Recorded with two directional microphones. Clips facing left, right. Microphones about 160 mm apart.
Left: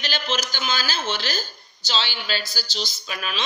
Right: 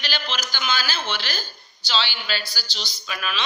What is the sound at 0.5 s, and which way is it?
A woman's voice, 40° left (ahead or behind).